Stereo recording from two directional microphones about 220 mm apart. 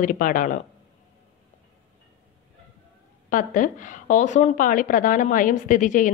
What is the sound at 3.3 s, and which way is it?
A woman's voice, 35° left (ahead or behind).